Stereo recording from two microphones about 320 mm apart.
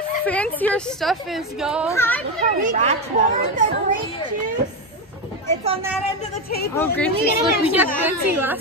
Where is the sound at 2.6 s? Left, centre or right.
Right.